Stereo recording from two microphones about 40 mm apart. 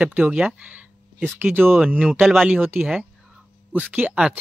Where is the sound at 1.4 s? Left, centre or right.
Right.